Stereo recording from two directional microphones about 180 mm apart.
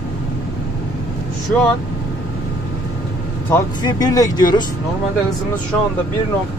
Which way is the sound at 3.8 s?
25° left (ahead or behind).